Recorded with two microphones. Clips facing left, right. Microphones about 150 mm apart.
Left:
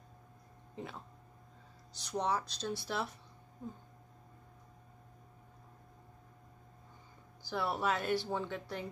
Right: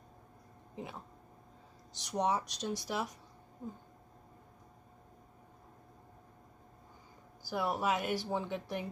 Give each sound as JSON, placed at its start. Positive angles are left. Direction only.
{"t": 0.7, "sound": "speech", "side_deg": -15}
{"t": 2.0, "sound": "speech", "side_deg": -15}
{"t": 7.4, "sound": "speech", "side_deg": -15}